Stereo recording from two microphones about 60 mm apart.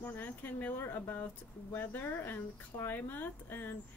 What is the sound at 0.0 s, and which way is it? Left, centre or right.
Speech, left.